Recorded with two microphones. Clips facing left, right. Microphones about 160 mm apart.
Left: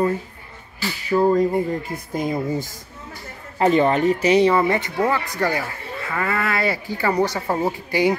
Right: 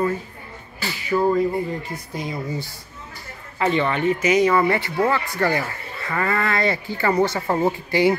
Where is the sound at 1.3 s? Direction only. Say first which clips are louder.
Left 2 dB; 45° left (ahead or behind); by 4.6 s 30° left (ahead or behind).